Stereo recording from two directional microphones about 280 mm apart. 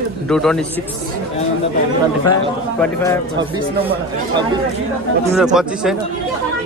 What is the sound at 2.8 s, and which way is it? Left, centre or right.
Speech, centre.